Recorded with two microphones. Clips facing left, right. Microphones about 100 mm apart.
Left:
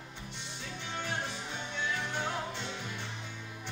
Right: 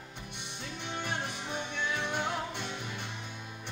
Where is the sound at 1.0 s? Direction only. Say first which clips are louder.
Even; 15° right (ahead or behind).